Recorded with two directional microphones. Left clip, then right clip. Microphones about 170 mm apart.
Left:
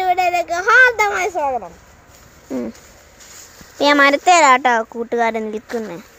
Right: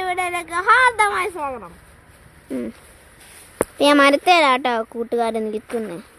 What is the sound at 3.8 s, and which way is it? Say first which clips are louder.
Speech: left 2 dB; 20° right (ahead or behind).